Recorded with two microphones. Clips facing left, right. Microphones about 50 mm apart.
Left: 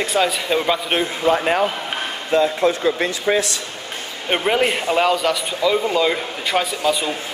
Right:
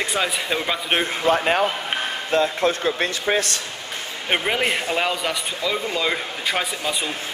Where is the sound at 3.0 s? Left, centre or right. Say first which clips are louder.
Left 3 dB; right.